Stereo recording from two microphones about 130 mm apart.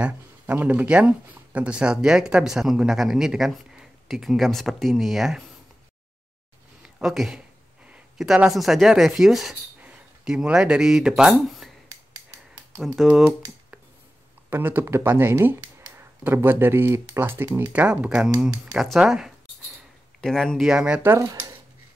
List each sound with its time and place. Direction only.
0.0 s speech: 15° right (ahead or behind)
6.8 s speech: centre (ahead or behind)
12.8 s speech: 5° right (ahead or behind)
14.5 s speech: 15° right (ahead or behind)
21.1 s speech: 20° right (ahead or behind)